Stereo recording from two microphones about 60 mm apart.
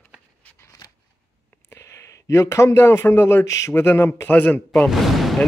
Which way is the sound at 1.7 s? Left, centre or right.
Left.